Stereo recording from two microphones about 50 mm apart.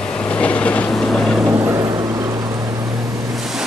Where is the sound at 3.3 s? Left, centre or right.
Centre.